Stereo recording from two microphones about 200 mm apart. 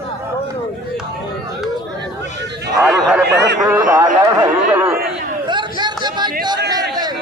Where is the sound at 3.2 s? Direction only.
60° right (ahead or behind).